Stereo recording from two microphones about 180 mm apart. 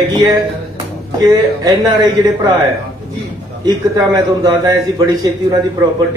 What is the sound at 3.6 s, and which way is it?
Speech, 20° right (ahead or behind).